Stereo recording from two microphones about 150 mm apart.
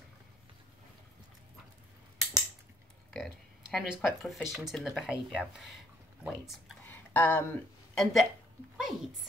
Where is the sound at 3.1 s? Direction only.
Centre (ahead or behind).